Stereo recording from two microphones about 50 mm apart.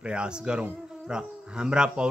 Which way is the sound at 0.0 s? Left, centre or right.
Right.